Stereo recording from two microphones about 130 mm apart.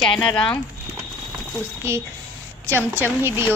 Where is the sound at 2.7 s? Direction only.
15° right (ahead or behind).